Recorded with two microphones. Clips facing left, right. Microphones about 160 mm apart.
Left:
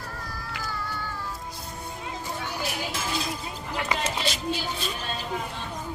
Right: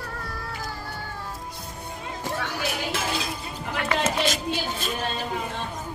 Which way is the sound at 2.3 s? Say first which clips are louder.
Right 3 dB; 90° right.